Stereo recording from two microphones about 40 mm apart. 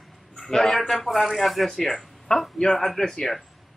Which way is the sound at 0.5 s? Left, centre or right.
Centre.